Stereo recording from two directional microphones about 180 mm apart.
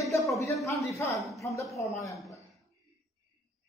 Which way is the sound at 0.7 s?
15° left (ahead or behind).